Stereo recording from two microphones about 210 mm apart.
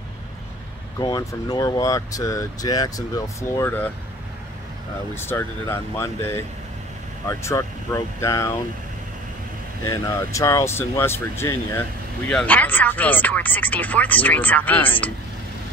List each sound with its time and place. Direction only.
0.9 s speech: 20° left (ahead or behind)
5.1 s speech: 10° left (ahead or behind)
9.8 s speech: 15° left (ahead or behind)